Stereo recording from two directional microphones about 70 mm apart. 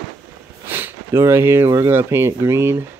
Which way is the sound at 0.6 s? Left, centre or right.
Right.